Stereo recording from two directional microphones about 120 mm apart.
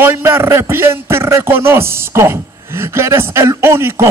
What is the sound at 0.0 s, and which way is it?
A man's voice, 20° right (ahead or behind).